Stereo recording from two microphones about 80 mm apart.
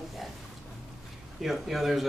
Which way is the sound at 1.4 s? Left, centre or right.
Centre.